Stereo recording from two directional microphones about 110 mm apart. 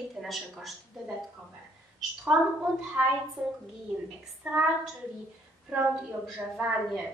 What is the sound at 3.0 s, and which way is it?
Speech, 15° right (ahead or behind).